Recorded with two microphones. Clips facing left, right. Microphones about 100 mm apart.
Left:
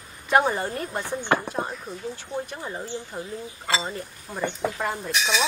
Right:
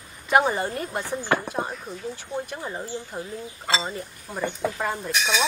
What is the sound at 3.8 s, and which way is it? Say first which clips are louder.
Speech: even; 5° right (ahead or behind).